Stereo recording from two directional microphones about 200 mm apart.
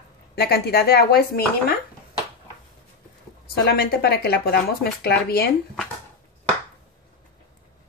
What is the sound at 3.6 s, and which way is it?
Speech, 50° left (ahead or behind).